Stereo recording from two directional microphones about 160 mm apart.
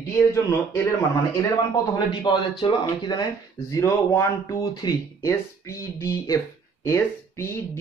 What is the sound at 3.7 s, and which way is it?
Speech, 20° left (ahead or behind).